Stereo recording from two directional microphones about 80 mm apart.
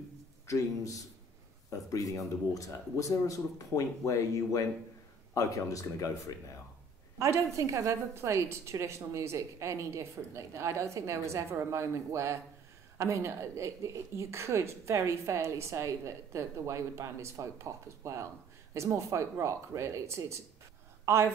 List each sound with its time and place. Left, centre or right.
0.5 s speech: left
7.2 s a woman's voice: right
21.0 s a sound: right